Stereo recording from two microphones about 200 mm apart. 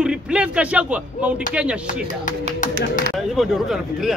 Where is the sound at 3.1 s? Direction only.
Centre (ahead or behind).